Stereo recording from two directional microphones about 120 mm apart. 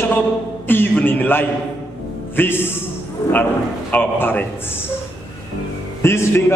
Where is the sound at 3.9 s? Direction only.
15° left (ahead or behind).